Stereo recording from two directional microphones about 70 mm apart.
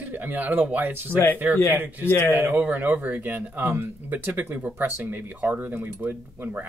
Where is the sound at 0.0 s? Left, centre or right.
Right.